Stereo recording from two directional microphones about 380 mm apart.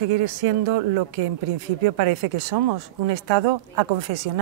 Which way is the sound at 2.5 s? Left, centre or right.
Right.